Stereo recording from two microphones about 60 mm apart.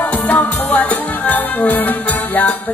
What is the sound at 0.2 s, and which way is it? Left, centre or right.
Music, left.